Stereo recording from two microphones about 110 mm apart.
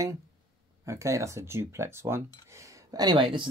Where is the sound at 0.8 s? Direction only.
30° right (ahead or behind).